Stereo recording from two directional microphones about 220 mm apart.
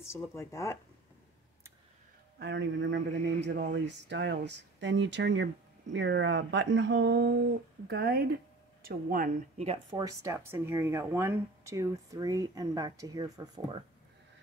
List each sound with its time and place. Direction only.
0.1 s speech: 10° left (ahead or behind)
2.3 s speech: 55° right (ahead or behind)
9.8 s speech: 15° right (ahead or behind)